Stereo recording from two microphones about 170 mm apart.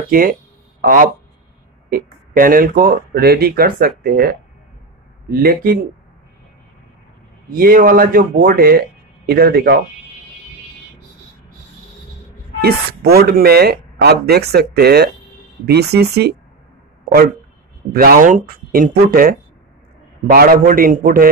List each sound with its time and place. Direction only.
0.1 s a sound: 55° right (ahead or behind)
1.9 s speech: 55° right (ahead or behind)
7.5 s speech: 55° right (ahead or behind)
12.6 s speech: 65° right (ahead or behind)
17.9 s speech: 60° right (ahead or behind)